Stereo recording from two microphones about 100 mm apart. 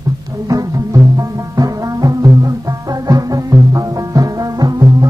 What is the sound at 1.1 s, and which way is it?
Music, 40° right (ahead or behind).